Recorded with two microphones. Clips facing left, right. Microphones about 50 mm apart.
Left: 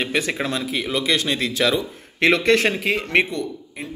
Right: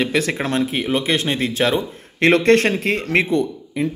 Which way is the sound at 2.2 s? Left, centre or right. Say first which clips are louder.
Right 3 dB; right.